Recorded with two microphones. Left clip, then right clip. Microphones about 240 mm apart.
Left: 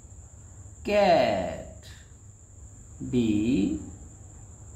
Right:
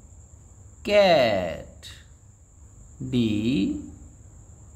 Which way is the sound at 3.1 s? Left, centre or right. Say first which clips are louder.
Even; right.